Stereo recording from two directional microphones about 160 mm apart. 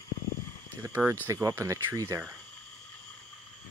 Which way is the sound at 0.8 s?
15° right (ahead or behind).